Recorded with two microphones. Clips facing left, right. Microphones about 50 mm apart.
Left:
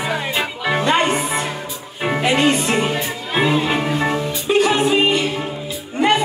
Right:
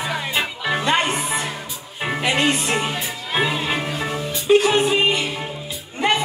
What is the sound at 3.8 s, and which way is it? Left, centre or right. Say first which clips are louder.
Music: left 5 dB; left.